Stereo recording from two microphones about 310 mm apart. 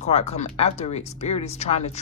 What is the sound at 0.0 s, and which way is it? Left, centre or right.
Speech, centre.